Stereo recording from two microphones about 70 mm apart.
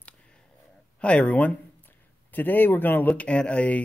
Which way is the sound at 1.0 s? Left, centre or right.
Centre.